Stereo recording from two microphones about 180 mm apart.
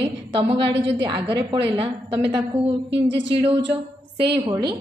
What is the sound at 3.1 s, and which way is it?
Speech, 80° right.